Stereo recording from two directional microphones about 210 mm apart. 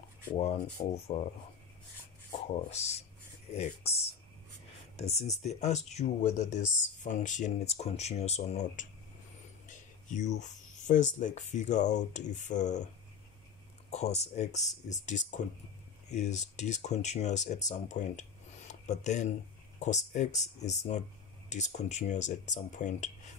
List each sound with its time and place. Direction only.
0.3 s speech: 25° left (ahead or behind)
2.4 s speech: 30° left (ahead or behind)
9.7 s a sound: 35° left (ahead or behind)
11.1 s speech: 35° left (ahead or behind)
13.8 s speech: 30° left (ahead or behind)